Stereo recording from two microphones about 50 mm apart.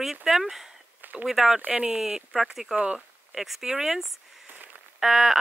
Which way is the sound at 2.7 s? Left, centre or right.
Right.